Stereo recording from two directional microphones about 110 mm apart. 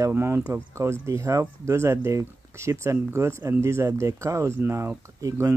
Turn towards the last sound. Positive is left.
turn(degrees=-30)  # may be behind; listen again after turning